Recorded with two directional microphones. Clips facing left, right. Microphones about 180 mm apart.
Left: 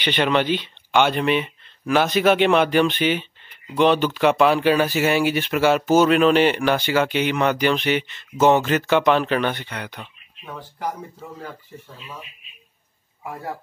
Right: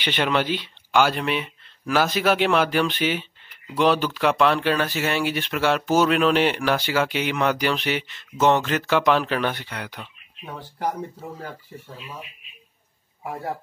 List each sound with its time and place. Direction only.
0.0 s speech: 5° right (ahead or behind)
10.4 s speech: 40° right (ahead or behind)